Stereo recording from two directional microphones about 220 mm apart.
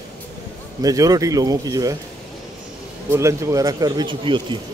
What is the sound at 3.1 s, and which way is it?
Speech, 15° right (ahead or behind).